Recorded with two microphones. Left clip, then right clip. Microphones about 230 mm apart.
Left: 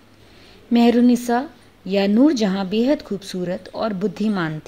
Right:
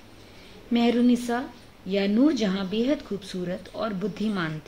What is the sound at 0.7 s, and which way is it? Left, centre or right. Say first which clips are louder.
Speech: left 7 dB; left.